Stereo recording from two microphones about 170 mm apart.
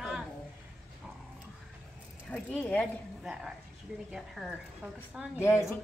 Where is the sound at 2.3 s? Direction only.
10° left (ahead or behind).